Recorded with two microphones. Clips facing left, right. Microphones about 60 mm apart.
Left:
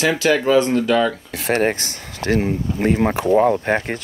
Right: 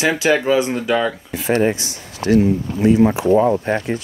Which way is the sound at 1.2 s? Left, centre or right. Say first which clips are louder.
Right 2 dB; left.